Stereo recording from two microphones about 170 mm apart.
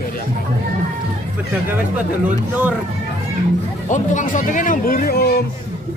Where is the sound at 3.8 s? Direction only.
45° left (ahead or behind); by 5.4 s 65° left (ahead or behind).